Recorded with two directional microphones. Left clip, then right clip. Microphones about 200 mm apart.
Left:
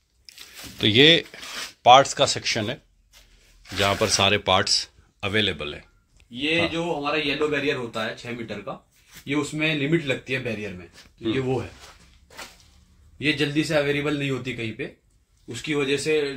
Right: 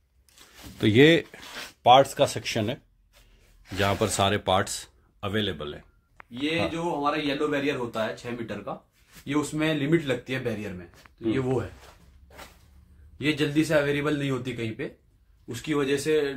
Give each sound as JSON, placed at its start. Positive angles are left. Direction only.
{"t": 0.7, "sound": "speech", "side_deg": -25}
{"t": 1.8, "sound": "speech", "side_deg": -10}
{"t": 5.2, "sound": "speech", "side_deg": 5}
{"t": 6.3, "sound": "speech", "side_deg": -10}
{"t": 13.2, "sound": "speech", "side_deg": -10}